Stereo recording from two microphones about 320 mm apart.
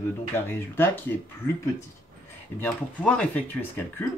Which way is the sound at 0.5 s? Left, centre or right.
Centre.